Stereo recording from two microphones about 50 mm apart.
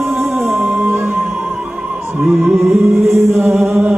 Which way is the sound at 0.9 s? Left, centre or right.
Right.